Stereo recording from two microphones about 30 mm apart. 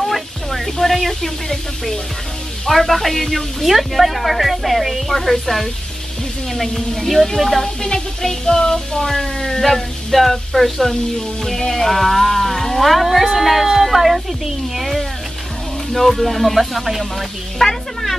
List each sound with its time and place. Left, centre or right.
0.0 s music: centre
2.6 s speech: centre
6.5 s music: centre
7.6 s music: centre
10.1 s speech: centre